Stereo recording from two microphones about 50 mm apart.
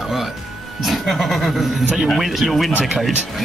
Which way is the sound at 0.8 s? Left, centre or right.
Centre.